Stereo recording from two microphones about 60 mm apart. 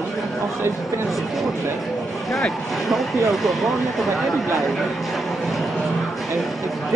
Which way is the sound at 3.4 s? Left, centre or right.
Centre.